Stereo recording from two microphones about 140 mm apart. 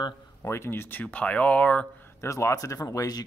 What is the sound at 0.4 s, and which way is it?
Speech, 20° left (ahead or behind).